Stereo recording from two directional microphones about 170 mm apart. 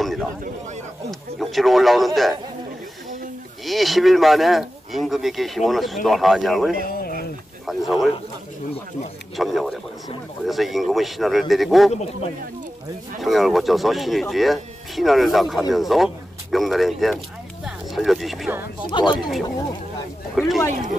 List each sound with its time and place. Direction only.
0.0 s a sound: centre (ahead or behind)
1.4 s speech: centre (ahead or behind)
3.6 s speech: centre (ahead or behind)
6.9 s a sound: 60° left (ahead or behind)
7.6 s speech: centre (ahead or behind)
9.4 s speech: centre (ahead or behind)
13.2 s speech: centre (ahead or behind)
18.9 s speech: 25° left (ahead or behind)
20.3 s speech: centre (ahead or behind)